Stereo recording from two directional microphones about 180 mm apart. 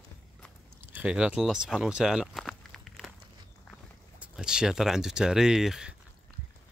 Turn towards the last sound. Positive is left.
turn(degrees=-5)  # may be behind; listen again after turning